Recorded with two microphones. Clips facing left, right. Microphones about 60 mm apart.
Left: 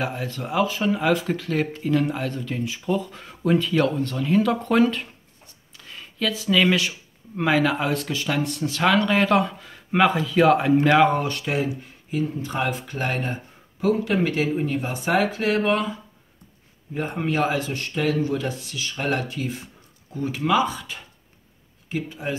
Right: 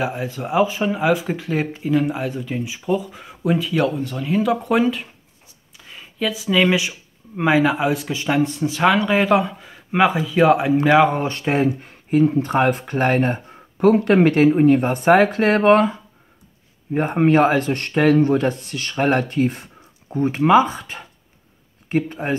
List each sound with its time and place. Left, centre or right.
0.0 s speech: centre
11.1 s speech: right
11.6 s speech: right
16.9 s speech: right